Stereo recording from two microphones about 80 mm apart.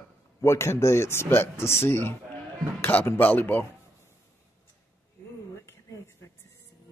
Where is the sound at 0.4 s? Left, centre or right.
Left.